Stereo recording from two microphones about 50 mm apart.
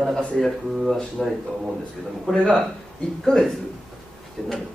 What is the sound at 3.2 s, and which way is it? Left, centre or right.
Speech, centre.